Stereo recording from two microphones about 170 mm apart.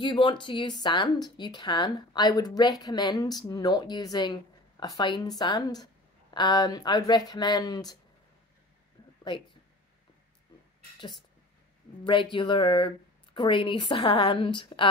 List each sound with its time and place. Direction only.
0.0 s a woman's voice: 30° left (ahead or behind)
12.0 s a woman's voice: 30° left (ahead or behind)